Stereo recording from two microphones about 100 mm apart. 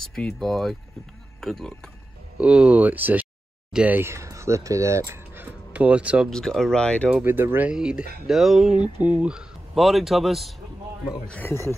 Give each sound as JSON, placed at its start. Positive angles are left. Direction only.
{"t": 0.1, "sound": "speech", "side_deg": 5}
{"t": 2.3, "sound": "speech", "side_deg": -10}
{"t": 4.0, "sound": "speech", "side_deg": -30}
{"t": 6.3, "sound": "speech", "side_deg": 5}
{"t": 7.2, "sound": "speech", "side_deg": -20}
{"t": 7.7, "sound": "speech", "side_deg": -5}
{"t": 11.4, "sound": "speech", "side_deg": 25}